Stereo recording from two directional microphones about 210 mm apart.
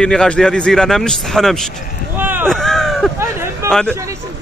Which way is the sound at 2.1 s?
10° right (ahead or behind).